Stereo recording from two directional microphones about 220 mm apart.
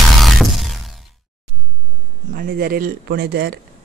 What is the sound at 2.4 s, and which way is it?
Speech, 40° right (ahead or behind).